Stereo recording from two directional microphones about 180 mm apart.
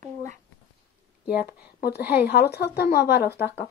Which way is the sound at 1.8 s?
60° left (ahead or behind).